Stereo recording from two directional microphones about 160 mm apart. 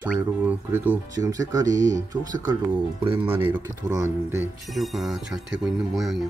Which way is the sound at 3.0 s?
35° right (ahead or behind).